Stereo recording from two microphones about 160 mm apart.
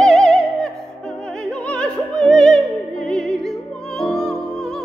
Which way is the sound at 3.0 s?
5° left (ahead or behind).